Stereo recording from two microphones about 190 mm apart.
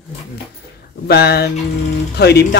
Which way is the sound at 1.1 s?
55° left (ahead or behind).